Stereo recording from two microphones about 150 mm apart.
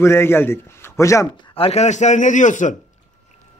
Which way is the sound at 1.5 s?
40° left (ahead or behind).